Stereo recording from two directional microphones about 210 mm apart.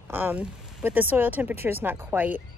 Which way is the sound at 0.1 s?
10° right (ahead or behind).